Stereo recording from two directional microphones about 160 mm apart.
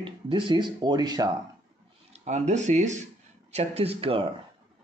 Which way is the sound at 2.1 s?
45° right (ahead or behind).